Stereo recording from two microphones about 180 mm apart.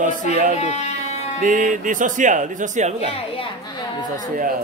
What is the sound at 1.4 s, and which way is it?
Speech, 45° right (ahead or behind).